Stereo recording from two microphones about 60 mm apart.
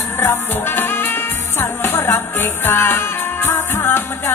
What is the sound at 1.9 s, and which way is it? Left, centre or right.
Music, left.